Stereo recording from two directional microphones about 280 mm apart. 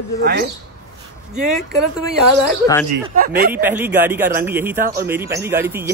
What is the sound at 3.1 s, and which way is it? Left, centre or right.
Speech, right.